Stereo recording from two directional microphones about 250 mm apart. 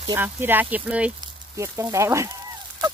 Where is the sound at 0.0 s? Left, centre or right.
Centre.